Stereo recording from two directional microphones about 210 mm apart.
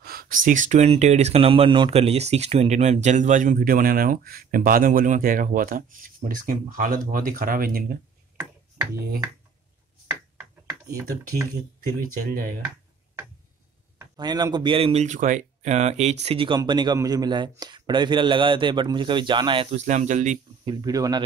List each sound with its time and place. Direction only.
0.0 s speech: 45° right (ahead or behind)
12.2 s speech: 40° right (ahead or behind)
13.9 s speech: 20° right (ahead or behind); by 20.7 s 35° right (ahead or behind)
20.8 s speech: 15° right (ahead or behind)